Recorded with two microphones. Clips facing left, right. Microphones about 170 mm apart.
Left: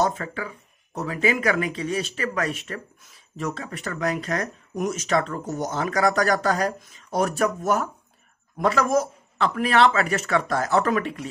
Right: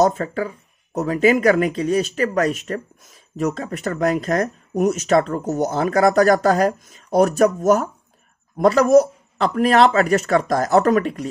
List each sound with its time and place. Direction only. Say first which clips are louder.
0.0 s speech: right 7 dB; 40° right (ahead or behind)